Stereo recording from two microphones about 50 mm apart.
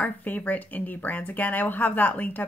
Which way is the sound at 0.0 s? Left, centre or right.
Left.